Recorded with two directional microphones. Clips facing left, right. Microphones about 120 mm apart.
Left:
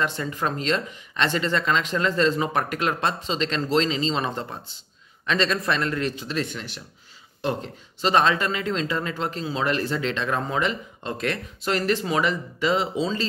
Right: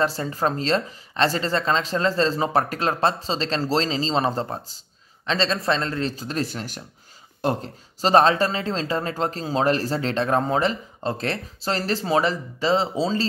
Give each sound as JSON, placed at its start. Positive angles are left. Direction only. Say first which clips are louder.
{"t": 0.0, "sound": "speech", "louder": "right 3 dB", "side_deg": -35}